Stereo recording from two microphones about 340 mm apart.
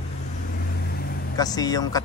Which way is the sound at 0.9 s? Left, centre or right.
Left.